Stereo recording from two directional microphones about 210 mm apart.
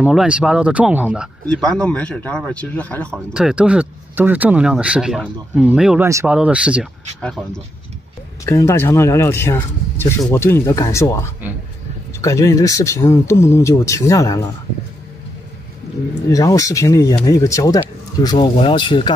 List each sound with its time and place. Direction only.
0.0 s speech: 5° right (ahead or behind)
3.3 s speech: 5° right (ahead or behind); by 11.1 s 15° left (ahead or behind)
12.2 s speech: 15° left (ahead or behind)
16.3 s speech: 15° left (ahead or behind)